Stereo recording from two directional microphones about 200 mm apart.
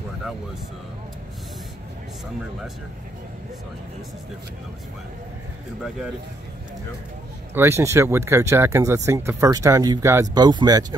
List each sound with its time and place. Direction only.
7.5 s speech: 15° right (ahead or behind)